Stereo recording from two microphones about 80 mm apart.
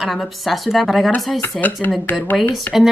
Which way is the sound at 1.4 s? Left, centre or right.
Left.